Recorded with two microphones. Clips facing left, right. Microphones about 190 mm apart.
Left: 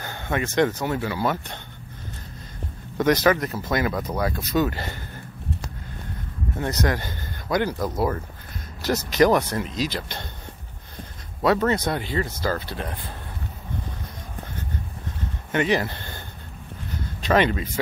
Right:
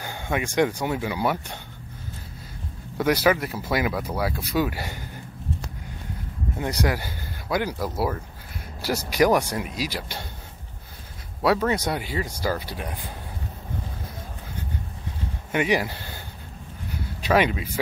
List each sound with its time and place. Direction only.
0.0 s speech: 10° right (ahead or behind)
3.0 s speech: 10° right (ahead or behind)
6.6 s speech: 10° right (ahead or behind)
11.4 s speech: 10° right (ahead or behind)
15.5 s speech: 10° right (ahead or behind)
16.9 s a sound: 10° right (ahead or behind)